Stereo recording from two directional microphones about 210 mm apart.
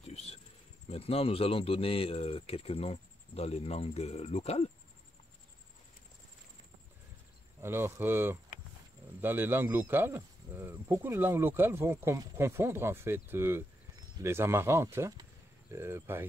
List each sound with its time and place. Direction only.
0.0 s insect: 30° left (ahead or behind)
0.8 s speech: 30° left (ahead or behind)
7.6 s speech: 10° right (ahead or behind)